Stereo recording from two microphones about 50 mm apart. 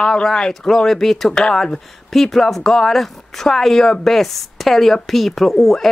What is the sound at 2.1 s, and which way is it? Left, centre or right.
Speech, centre.